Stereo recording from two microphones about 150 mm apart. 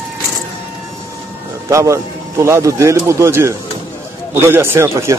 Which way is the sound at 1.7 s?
20° right (ahead or behind).